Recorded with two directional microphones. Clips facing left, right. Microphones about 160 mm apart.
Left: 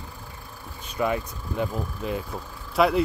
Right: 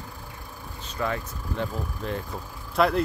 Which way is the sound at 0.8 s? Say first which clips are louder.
Left 4 dB; 15° left (ahead or behind).